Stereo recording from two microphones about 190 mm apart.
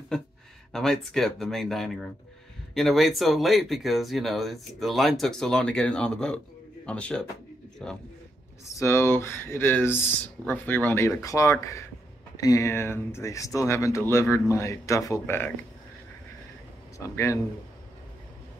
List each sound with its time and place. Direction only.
0.7 s speech: centre (ahead or behind)
8.6 s speech: 15° left (ahead or behind)
17.1 s speech: 15° left (ahead or behind)